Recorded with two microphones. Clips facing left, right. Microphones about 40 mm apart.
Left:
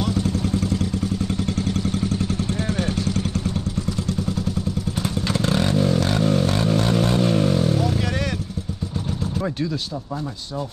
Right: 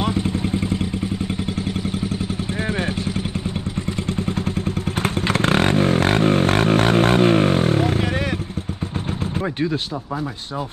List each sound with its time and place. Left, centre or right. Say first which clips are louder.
0.0 s vehicle: right 1 dB; right
5.0 s vehicle: right 4 dB; right